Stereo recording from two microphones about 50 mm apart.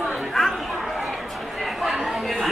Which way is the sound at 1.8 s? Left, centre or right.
Centre.